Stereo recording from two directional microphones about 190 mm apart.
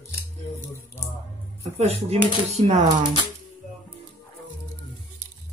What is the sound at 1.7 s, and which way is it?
Speech, 35° right (ahead or behind).